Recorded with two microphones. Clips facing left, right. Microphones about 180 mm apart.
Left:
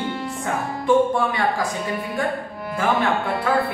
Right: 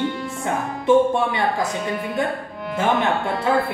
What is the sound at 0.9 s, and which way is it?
Music, 20° right (ahead or behind).